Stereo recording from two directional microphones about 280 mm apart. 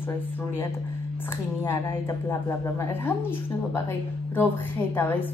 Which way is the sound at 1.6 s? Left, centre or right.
Centre.